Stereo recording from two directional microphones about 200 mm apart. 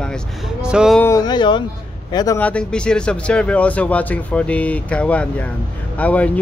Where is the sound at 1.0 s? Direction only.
20° left (ahead or behind).